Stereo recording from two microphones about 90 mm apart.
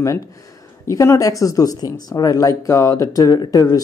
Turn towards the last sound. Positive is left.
turn(degrees=45)  # may be behind; listen again after turning